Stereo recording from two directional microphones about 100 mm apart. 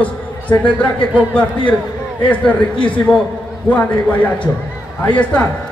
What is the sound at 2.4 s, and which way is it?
A man's voice, 15° left (ahead or behind).